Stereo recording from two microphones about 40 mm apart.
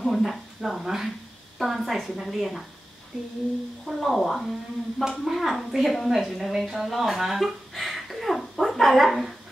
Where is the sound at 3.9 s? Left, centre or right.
Centre.